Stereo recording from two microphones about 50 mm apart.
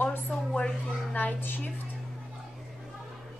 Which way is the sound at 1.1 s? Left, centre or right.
Left.